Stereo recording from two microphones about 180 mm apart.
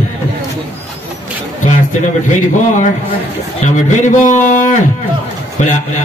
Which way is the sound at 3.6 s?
40° left (ahead or behind).